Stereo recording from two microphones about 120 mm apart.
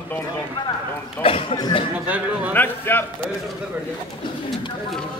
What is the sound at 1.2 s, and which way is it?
Speech, 50° left (ahead or behind).